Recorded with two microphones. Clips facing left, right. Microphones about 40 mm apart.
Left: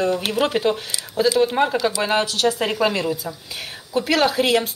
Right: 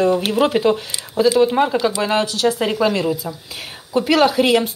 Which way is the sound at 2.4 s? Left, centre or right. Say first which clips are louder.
Right 4 dB; centre.